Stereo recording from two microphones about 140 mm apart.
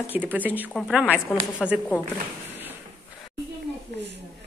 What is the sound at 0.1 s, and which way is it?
Speech, 10° right (ahead or behind).